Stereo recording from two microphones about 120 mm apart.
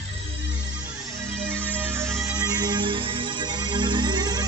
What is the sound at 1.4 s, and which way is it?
Music, 10° left (ahead or behind).